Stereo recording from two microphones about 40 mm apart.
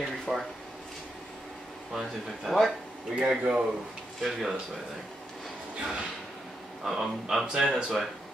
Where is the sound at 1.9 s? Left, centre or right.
Centre.